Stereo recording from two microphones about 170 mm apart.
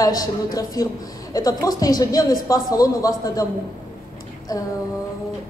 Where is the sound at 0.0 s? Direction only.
20° left (ahead or behind).